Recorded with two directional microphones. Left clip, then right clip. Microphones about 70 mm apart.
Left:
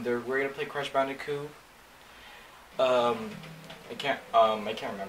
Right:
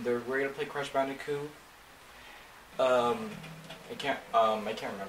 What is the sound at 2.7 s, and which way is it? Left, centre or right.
Speech, left.